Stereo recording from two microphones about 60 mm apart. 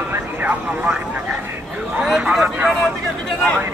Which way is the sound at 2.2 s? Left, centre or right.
Centre.